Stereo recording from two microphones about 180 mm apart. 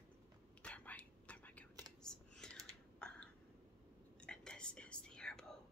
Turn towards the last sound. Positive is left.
turn(degrees=5)  # may be behind; listen again after turning